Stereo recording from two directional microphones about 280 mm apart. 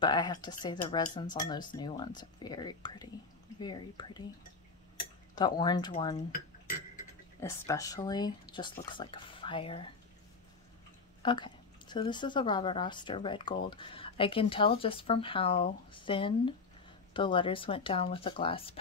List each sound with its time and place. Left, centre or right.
0.0 s speech: centre
5.3 s speech: centre
6.3 s cutlery: left
7.3 s speech: centre
11.2 s speech: centre